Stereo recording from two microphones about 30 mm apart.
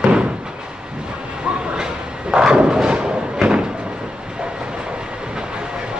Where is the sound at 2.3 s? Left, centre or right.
Right.